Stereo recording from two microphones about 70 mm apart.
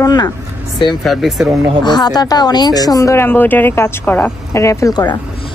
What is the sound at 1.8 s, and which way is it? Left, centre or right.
Speech, left.